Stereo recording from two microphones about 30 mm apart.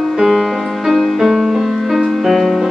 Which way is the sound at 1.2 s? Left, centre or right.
Centre.